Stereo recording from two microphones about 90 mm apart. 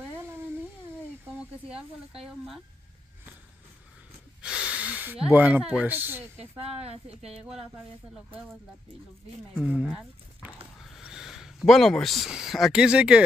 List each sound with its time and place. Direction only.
0.2 s a sound: 25° right (ahead or behind)
4.4 s snort: 10° right (ahead or behind)
5.3 s speech: 15° right (ahead or behind)
6.5 s speech: 90° right
9.7 s speech: 10° right (ahead or behind)